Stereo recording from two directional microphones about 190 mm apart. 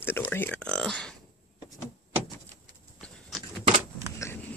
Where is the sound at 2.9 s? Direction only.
Centre (ahead or behind).